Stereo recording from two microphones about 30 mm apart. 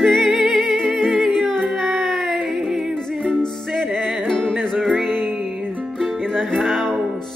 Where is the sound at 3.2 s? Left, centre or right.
Left.